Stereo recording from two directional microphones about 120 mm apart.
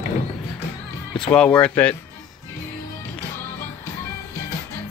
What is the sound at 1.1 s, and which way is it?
Speech, 5° left (ahead or behind).